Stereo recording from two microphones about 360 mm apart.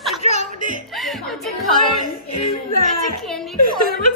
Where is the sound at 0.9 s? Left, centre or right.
Centre.